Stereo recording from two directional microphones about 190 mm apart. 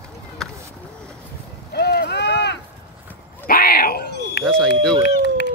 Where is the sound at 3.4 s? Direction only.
50° left (ahead or behind).